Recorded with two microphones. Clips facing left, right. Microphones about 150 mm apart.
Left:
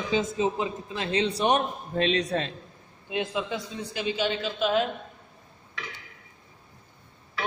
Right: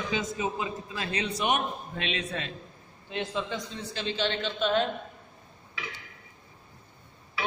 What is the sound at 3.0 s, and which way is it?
A man's voice, 10° left (ahead or behind).